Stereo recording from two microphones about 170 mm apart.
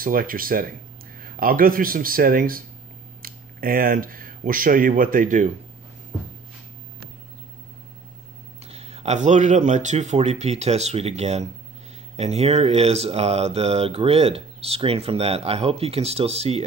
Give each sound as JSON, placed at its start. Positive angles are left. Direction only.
{"t": 0.0, "sound": "speech", "side_deg": -55}
{"t": 8.6, "sound": "speech", "side_deg": -35}